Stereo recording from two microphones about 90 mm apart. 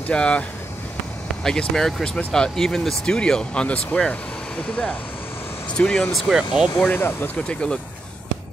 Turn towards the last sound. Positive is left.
turn(degrees=10)  # may be behind; listen again after turning